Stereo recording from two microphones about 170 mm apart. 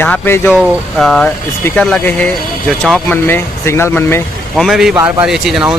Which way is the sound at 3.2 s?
15° left (ahead or behind).